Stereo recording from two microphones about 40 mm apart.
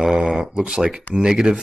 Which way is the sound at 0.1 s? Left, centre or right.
Right.